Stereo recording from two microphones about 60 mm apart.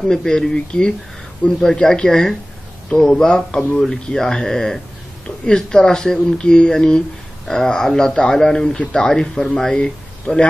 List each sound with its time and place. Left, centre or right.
0.1 s speech: centre